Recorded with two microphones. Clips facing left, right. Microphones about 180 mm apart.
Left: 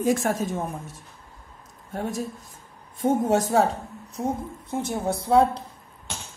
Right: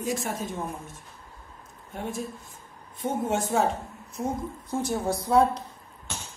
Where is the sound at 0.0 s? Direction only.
50° left (ahead or behind).